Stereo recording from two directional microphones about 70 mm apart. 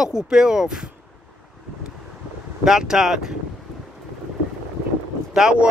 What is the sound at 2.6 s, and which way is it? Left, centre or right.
Speech, centre.